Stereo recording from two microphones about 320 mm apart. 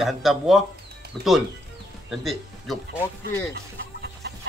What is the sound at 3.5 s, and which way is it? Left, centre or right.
Chicken, right.